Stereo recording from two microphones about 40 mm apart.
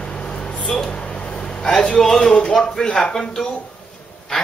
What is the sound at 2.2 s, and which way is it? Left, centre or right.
Speech, centre.